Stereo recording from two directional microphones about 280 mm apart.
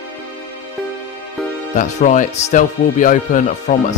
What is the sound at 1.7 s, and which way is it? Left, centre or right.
Speech, left.